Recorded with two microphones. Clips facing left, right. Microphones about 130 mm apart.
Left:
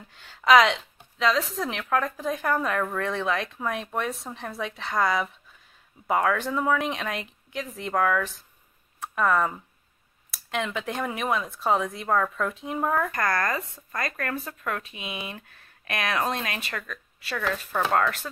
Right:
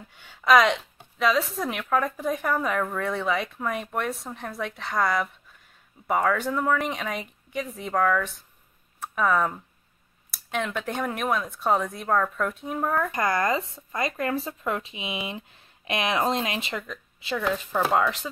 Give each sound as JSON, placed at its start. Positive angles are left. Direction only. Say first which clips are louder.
{"t": 0.1, "sound": "speech", "louder": "left 1 dB", "side_deg": 0}
{"t": 13.1, "sound": "speech", "louder": "right 2 dB", "side_deg": -20}
{"t": 17.7, "sound": "speech", "louder": "even", "side_deg": -10}